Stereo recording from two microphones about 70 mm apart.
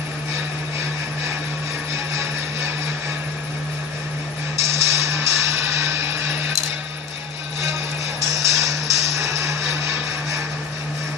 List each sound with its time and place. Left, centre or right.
4.6 s music: right
8.4 s music: right